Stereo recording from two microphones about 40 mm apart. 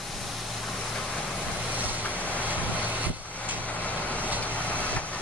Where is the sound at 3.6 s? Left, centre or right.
Left.